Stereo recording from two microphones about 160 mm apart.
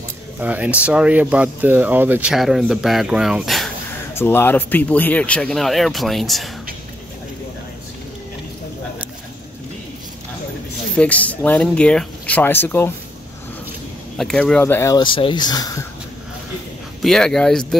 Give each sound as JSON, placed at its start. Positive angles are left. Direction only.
{"t": 0.4, "sound": "speech", "side_deg": -10}
{"t": 4.1, "sound": "speech", "side_deg": 15}
{"t": 11.0, "sound": "speech", "side_deg": 10}
{"t": 14.1, "sound": "speech", "side_deg": 5}
{"t": 15.0, "sound": "speech", "side_deg": 30}
{"t": 17.0, "sound": "speech", "side_deg": 5}